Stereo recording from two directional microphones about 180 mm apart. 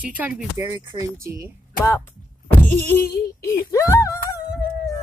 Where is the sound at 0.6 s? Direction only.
20° right (ahead or behind).